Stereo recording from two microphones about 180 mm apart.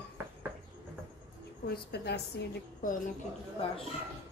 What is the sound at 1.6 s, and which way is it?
Speech, 60° left (ahead or behind).